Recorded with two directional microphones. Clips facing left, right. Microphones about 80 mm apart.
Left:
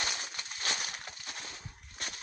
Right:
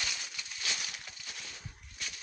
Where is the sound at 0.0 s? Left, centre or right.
Left.